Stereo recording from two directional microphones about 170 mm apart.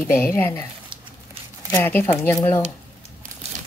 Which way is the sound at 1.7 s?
10° left (ahead or behind).